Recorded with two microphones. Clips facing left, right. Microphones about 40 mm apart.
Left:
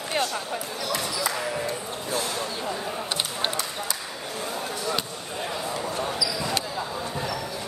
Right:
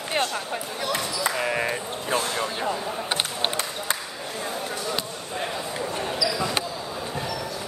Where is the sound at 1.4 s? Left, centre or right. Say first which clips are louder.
Right 3 dB; right.